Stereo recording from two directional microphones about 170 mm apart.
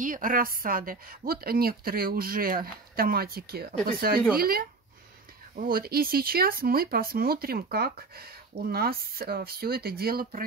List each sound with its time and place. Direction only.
0.0 s speech: 50° right (ahead or behind)